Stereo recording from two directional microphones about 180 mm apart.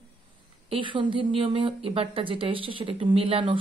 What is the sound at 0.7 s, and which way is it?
Speech, 30° right (ahead or behind).